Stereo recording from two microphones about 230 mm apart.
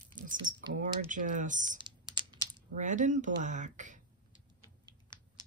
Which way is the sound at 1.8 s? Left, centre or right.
Centre.